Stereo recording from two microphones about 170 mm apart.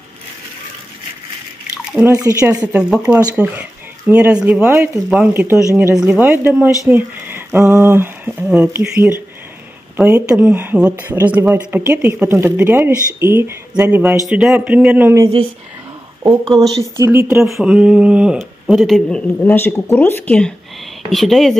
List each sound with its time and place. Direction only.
1.9 s speech: 5° right (ahead or behind)
2.1 s speech: 20° right (ahead or behind)
2.5 s speech: 5° right (ahead or behind)
9.9 s speech: 10° right (ahead or behind)
14.2 s speech: centre (ahead or behind)
17.4 s speech: centre (ahead or behind)